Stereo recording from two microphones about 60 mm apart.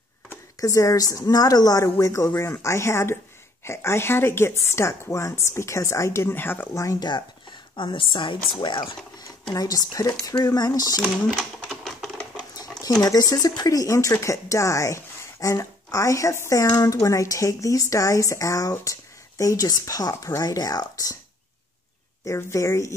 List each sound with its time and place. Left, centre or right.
0.6 s a woman's voice: left
6.3 s speech: left
6.7 s speech: left
9.5 s speech: left
10.2 s speech: left
11.2 s typewriter: centre
12.8 s speech: left
22.2 s speech: left